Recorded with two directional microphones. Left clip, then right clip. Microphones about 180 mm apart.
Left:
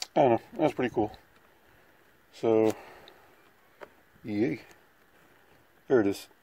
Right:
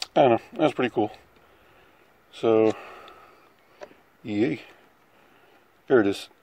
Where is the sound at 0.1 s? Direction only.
5° right (ahead or behind).